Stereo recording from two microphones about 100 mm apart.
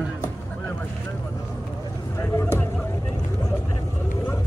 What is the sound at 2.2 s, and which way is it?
Speech, 30° left (ahead or behind).